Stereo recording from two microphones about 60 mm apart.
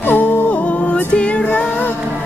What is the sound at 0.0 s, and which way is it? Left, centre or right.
Music, left.